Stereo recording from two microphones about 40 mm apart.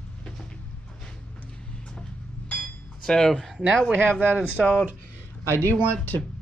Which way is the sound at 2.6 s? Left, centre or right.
Centre.